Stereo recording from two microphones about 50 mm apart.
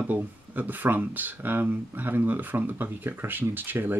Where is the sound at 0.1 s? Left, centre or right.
Right.